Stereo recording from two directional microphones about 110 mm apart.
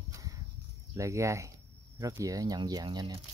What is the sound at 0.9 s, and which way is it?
Speech, 30° right (ahead or behind).